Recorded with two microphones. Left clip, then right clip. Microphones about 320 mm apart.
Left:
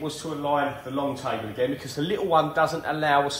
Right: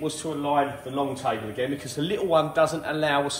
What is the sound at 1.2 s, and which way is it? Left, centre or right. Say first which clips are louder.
Speech: even; centre.